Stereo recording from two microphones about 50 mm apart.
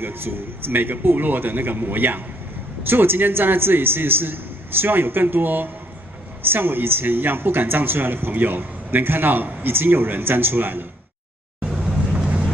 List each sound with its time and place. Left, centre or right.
0.0 s a man's voice: right
11.6 s vehicle: centre